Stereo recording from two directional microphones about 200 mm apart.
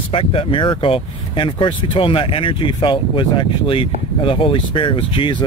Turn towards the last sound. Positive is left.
turn(degrees=25)  # may be behind; listen again after turning